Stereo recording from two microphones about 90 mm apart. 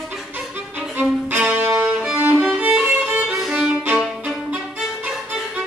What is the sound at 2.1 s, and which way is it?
Music, 25° right (ahead or behind).